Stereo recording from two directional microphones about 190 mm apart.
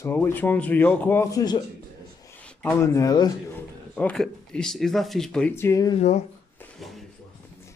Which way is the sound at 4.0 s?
5° left (ahead or behind).